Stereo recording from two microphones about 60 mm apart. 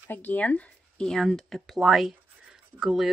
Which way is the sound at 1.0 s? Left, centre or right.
Centre.